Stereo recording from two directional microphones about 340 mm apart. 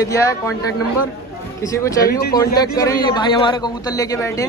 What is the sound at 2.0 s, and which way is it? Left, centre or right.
Speech, left.